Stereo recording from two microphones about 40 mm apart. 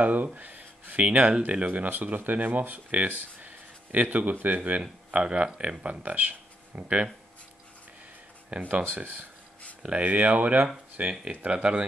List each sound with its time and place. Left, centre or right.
0.0 s speech: right
1.9 s speech: right
4.6 s speech: right
8.5 s speech: right